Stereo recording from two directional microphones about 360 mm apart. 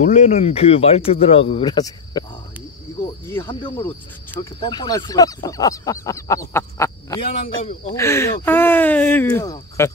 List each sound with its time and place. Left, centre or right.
0.0 s speech: centre
3.3 s speech: centre